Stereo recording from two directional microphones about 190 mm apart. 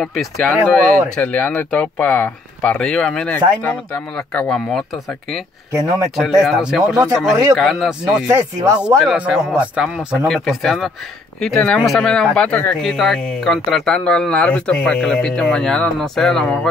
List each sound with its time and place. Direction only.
0.0 s speech: centre (ahead or behind)